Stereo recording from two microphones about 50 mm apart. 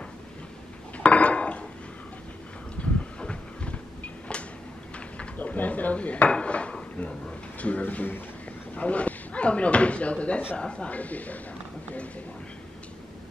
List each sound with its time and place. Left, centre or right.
0.9 s a sound: left
2.8 s train: left
4.0 s a sound: left
5.4 s dishes: left
7.8 s a man's voice: left
8.7 s speech: left